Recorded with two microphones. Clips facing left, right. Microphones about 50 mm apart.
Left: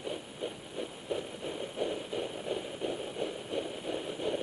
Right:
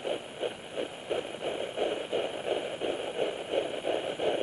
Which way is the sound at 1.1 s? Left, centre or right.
Right.